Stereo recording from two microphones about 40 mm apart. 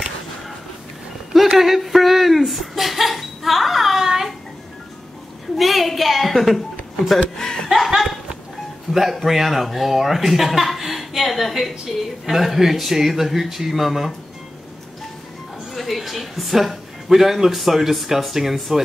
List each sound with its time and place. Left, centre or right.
1.6 s a sound: centre
5.6 s a sound: centre
7.3 s speech: centre
7.7 s laughter: centre
8.9 s speech: centre
15.7 s speech: centre